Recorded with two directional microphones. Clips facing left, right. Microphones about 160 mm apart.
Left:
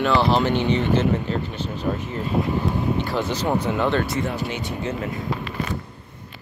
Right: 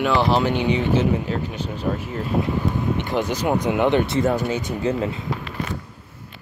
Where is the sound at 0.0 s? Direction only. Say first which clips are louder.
Even; 10° right (ahead or behind).